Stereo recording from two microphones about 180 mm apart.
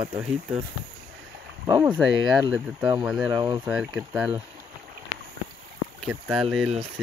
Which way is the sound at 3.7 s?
5° right (ahead or behind).